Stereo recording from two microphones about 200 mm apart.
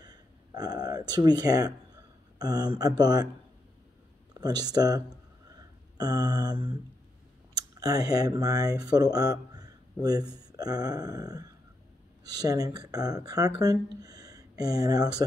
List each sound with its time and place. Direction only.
0.0 s speech: 20° right (ahead or behind)
4.3 s speech: 20° right (ahead or behind)
5.5 s a sound: 20° right (ahead or behind)
7.8 s speech: 20° right (ahead or behind)